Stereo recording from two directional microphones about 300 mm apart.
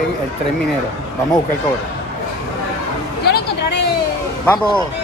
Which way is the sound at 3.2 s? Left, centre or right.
Left.